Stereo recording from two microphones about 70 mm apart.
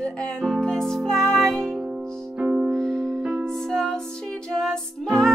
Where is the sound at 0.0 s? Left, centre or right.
Centre.